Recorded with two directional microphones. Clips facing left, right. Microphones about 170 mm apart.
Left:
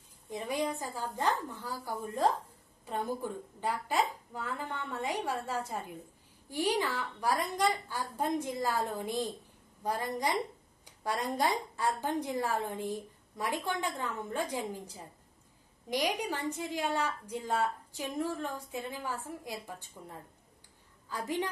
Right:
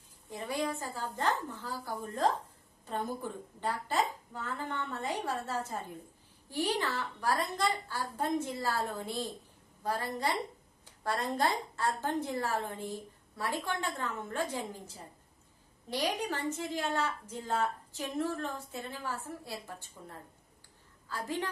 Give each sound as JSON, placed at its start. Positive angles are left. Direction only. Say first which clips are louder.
{"t": 0.3, "sound": "a woman's voice", "louder": "left 1 dB", "side_deg": 15}
{"t": 10.9, "sound": "a sound", "louder": "even", "side_deg": 15}
{"t": 11.3, "sound": "a woman's voice", "louder": "even", "side_deg": 15}